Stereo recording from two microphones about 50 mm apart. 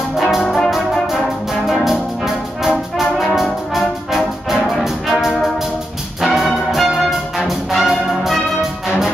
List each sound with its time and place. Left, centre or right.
0.2 s music: centre
3.3 s brass instrument: centre
6.2 s music: centre